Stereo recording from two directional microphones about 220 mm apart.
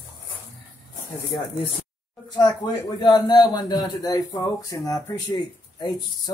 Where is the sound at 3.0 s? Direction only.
20° left (ahead or behind).